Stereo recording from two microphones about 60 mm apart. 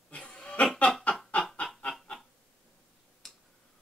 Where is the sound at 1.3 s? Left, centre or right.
Left.